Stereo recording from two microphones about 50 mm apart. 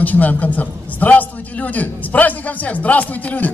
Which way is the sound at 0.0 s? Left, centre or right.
Left.